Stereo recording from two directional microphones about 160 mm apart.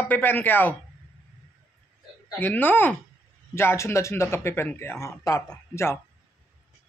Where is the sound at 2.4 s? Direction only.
10° left (ahead or behind).